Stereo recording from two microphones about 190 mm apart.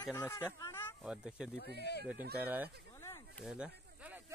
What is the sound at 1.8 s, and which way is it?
Speech, 60° left (ahead or behind).